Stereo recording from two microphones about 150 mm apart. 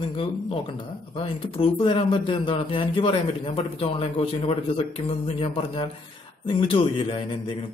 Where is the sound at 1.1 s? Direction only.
40° left (ahead or behind).